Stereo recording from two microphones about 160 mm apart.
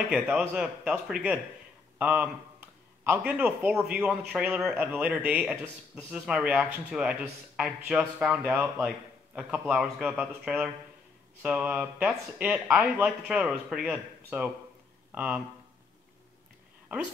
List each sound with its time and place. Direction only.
0.1 s speech: 5° right (ahead or behind)